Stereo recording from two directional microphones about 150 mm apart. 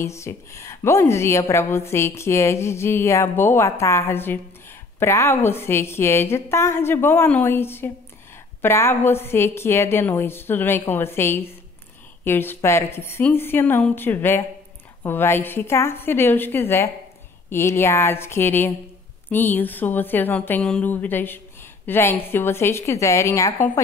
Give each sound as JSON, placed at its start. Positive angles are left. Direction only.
{"t": 0.0, "sound": "a woman's voice", "side_deg": 20}